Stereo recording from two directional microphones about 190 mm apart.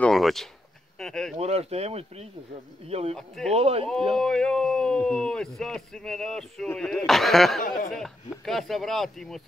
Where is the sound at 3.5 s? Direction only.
30° right (ahead or behind).